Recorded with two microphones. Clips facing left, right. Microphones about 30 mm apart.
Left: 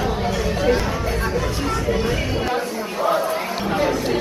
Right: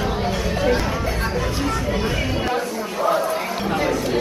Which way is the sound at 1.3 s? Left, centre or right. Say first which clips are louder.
Even; centre.